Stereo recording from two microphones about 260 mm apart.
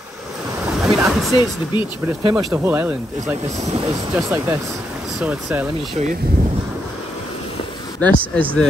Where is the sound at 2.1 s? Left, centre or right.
Centre.